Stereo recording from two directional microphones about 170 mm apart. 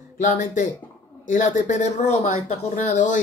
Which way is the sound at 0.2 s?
45° left (ahead or behind).